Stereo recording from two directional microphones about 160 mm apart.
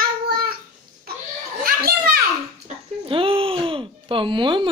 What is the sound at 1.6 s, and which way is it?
Children playing, 70° right (ahead or behind).